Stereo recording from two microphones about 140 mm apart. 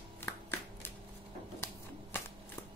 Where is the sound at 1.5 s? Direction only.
20° left (ahead or behind).